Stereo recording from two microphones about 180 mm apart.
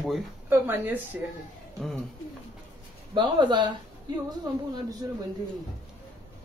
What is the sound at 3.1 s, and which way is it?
Speech, 25° right (ahead or behind).